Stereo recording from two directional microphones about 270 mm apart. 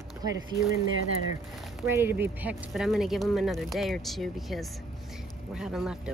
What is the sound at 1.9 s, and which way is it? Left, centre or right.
A woman's voice, centre.